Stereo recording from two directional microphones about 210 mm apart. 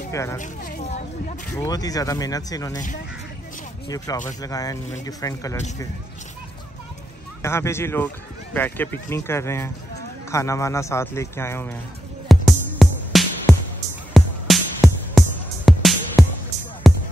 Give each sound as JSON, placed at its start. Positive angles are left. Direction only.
{"t": 0.1, "sound": "speech", "side_deg": 15}
{"t": 0.4, "sound": "speech", "side_deg": 35}
{"t": 1.5, "sound": "speech", "side_deg": 15}
{"t": 3.9, "sound": "speech", "side_deg": 15}
{"t": 7.4, "sound": "speech", "side_deg": 10}
{"t": 12.3, "sound": "music", "side_deg": 0}